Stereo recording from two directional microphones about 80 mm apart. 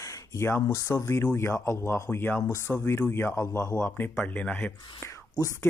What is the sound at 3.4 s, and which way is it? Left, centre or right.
A man's voice, left.